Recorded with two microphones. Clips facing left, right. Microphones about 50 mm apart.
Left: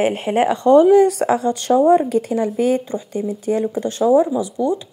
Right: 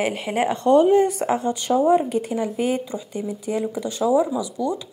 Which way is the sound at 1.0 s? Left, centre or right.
Left.